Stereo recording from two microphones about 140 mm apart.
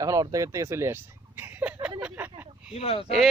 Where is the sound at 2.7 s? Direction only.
45° left (ahead or behind).